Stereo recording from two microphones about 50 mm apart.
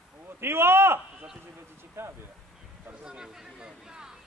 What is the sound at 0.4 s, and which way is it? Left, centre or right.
Speech, right.